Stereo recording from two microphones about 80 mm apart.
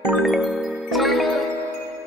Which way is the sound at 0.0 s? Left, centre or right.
Centre.